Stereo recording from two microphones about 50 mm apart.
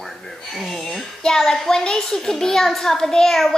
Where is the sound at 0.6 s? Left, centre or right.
Centre.